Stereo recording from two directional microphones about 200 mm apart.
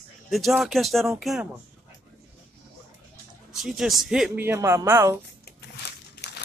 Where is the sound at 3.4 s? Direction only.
Centre (ahead or behind).